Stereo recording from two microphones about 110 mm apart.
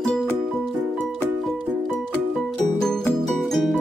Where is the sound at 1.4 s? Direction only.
Centre (ahead or behind).